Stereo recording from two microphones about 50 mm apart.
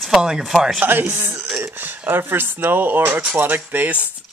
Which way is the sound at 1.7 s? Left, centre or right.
Right.